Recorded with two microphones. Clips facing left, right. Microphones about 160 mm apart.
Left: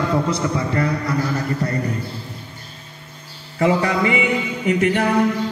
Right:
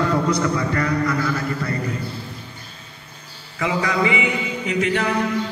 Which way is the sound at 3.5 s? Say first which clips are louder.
Left 4 dB; 50° left (ahead or behind).